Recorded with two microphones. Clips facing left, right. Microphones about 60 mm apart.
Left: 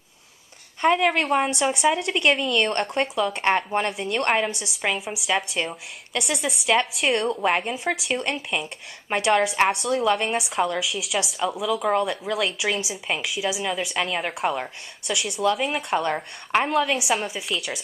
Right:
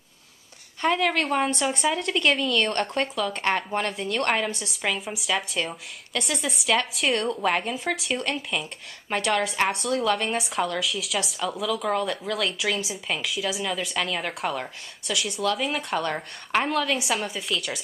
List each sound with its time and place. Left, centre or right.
0.7 s speech: centre
3.2 s a woman's voice: centre
4.0 s a woman's voice: left; by 8.2 s centre
8.2 s a woman's voice: centre